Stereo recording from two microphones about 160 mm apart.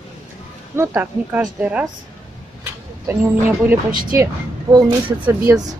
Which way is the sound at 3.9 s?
25° right (ahead or behind).